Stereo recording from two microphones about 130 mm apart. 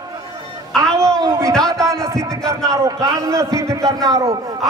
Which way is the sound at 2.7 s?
25° right (ahead or behind).